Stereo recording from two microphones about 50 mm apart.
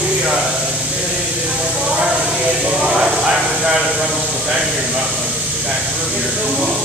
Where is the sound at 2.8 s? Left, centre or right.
Centre.